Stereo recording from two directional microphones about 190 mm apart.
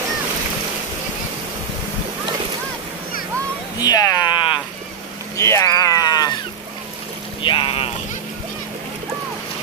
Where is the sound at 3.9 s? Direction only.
20° left (ahead or behind).